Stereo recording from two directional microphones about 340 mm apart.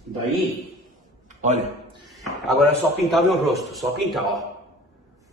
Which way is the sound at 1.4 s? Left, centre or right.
Centre.